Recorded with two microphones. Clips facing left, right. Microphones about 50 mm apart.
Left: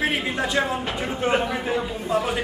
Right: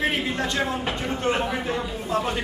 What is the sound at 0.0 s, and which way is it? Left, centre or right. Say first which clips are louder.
A man's voice: left 1 dB; centre.